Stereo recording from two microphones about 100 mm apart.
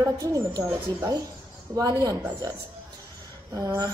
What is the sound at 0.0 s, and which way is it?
A woman's voice, 35° right (ahead or behind).